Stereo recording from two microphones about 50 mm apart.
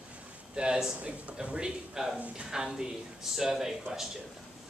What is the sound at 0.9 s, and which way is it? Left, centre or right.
A man's voice, right.